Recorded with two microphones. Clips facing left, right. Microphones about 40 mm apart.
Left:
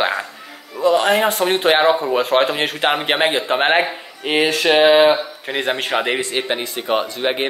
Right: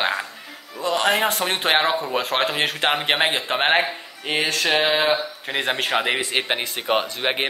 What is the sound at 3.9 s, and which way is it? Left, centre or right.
Speech, centre.